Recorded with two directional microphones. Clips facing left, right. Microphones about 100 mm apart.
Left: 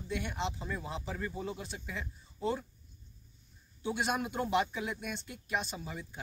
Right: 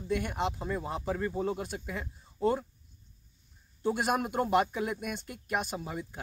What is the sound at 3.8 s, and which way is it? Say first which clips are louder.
Speech: right 4 dB; 45° right (ahead or behind).